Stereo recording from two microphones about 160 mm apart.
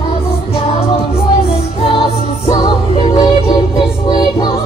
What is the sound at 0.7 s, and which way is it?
Music, 35° left (ahead or behind).